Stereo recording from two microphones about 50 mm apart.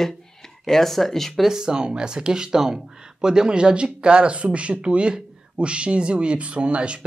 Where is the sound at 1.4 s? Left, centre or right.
Centre.